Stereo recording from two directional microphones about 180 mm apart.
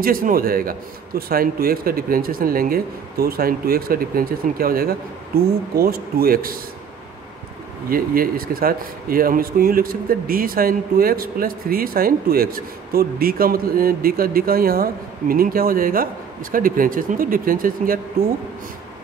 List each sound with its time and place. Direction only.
0.0 s a man's voice: 50° right (ahead or behind)
7.9 s a man's voice: 55° right (ahead or behind)